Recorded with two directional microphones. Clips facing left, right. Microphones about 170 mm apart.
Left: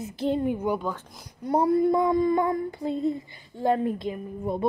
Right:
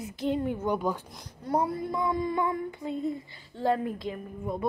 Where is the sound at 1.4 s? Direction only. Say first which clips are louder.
Left 3 dB; 15° left (ahead or behind).